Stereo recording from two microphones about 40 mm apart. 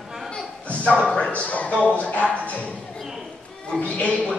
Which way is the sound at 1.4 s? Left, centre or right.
Left.